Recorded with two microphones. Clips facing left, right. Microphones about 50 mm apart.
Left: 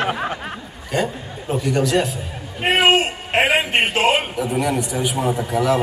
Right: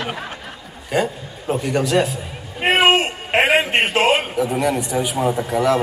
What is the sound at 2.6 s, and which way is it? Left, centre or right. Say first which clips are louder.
A man's voice: right 1 dB; centre.